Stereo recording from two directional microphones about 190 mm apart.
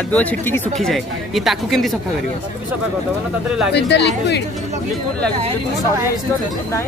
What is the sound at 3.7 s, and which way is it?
Speech, 65° left (ahead or behind).